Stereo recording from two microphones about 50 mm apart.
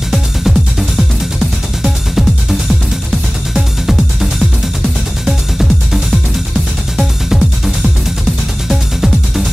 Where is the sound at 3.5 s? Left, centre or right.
Centre.